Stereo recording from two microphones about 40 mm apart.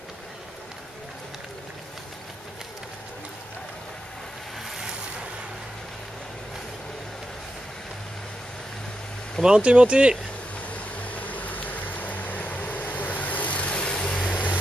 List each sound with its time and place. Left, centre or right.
9.4 s speech: right
11.0 s vehicle: left
13.7 s vehicle: left